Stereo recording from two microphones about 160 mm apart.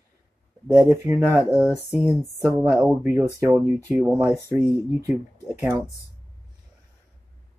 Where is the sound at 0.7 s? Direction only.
15° right (ahead or behind).